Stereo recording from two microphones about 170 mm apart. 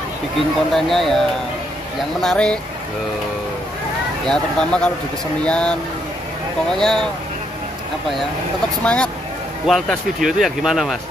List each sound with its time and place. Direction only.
0.7 s speech: centre (ahead or behind)
2.2 s speech: 5° left (ahead or behind)
4.3 s speech: 5° left (ahead or behind)
8.8 s speech: 5° left (ahead or behind)